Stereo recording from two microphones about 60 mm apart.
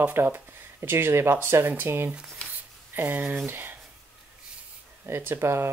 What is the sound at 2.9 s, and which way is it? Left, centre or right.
Speech, right.